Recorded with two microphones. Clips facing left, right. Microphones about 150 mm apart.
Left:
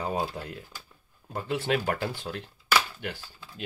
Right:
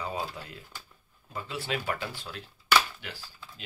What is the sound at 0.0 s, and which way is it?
Speech, 55° left (ahead or behind).